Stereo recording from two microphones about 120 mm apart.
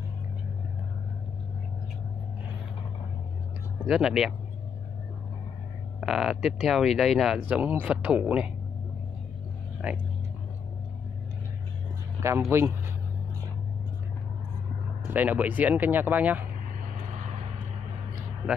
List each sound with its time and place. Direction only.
3.8 s speech: 5° right (ahead or behind)
5.9 s speech: 5° right (ahead or behind)
9.8 s speech: 10° right (ahead or behind)
12.2 s speech: 25° right (ahead or behind)
15.1 s speech: 15° right (ahead or behind)